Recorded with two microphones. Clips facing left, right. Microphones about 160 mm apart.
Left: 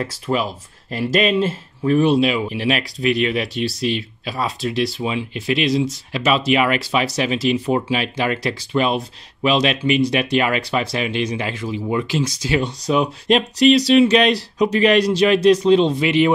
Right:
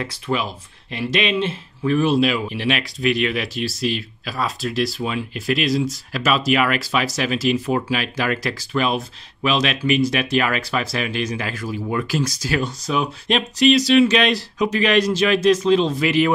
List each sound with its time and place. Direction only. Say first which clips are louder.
0.0 s speech: left 2 dB; 35° left (ahead or behind)
11.6 s speech: left 2 dB; 15° left (ahead or behind)
12.8 s speech: left 4 dB; 35° left (ahead or behind)